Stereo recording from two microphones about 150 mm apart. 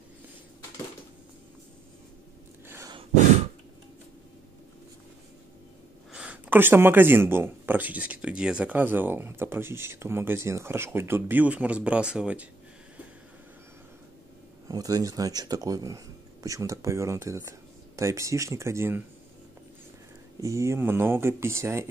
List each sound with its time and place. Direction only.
6.1 s speech: 10° right (ahead or behind)
14.7 s speech: 25° right (ahead or behind)
20.3 s speech: 20° right (ahead or behind)